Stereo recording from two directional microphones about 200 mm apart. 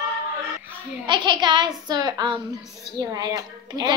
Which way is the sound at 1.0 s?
20° right (ahead or behind).